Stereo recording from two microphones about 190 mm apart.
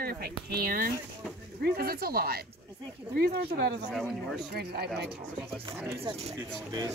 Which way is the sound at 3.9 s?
Centre (ahead or behind).